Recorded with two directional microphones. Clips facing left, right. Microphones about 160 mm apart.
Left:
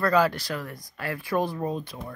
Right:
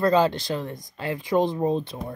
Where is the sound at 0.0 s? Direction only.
25° right (ahead or behind).